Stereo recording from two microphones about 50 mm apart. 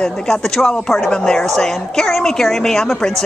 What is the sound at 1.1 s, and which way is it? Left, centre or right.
Speech, centre.